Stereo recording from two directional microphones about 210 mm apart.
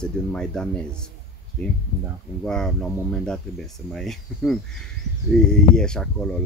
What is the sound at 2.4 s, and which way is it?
Speech, centre (ahead or behind).